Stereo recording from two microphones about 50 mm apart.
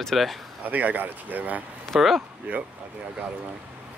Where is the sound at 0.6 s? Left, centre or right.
Right.